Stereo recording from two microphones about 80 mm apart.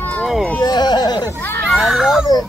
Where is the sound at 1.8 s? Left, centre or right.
Centre.